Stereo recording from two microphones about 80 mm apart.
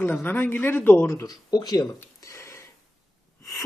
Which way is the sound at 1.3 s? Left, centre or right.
Left.